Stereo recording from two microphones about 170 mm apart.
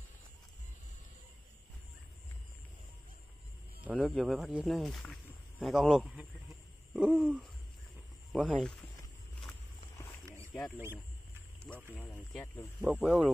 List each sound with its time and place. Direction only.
3.8 s speech: 5° right (ahead or behind)
6.9 s hoot: 5° right (ahead or behind)
8.3 s speech: centre (ahead or behind)
10.2 s rowboat: 15° right (ahead or behind)
11.9 s speech: 10° left (ahead or behind)
13.0 s speech: centre (ahead or behind)